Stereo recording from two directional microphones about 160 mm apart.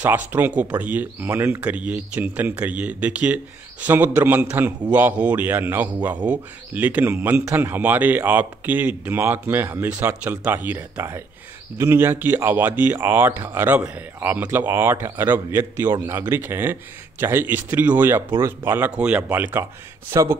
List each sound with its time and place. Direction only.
0.0 s a man's voice: 10° right (ahead or behind)